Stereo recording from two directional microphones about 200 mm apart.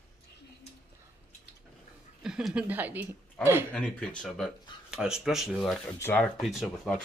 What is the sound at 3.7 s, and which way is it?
Speech, 5° left (ahead or behind).